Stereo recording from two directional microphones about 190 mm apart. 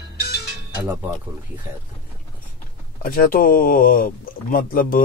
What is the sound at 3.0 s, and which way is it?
Speech, 50° left (ahead or behind).